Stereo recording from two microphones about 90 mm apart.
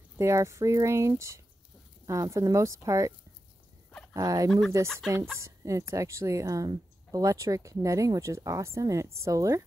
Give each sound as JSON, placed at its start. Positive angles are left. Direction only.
{"t": 0.2, "sound": "a woman's voice", "side_deg": -35}
{"t": 4.1, "sound": "speech", "side_deg": -40}
{"t": 4.5, "sound": "speech", "side_deg": 5}
{"t": 5.4, "sound": "a woman's voice", "side_deg": -35}